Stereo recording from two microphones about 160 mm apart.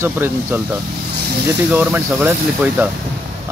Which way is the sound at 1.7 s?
10° right (ahead or behind).